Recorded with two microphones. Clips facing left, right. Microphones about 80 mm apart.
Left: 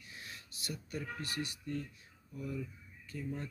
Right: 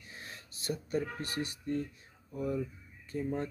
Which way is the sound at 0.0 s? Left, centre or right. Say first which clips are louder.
Right 2 dB; right.